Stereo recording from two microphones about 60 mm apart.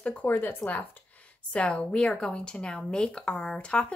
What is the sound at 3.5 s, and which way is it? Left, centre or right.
Speech, centre.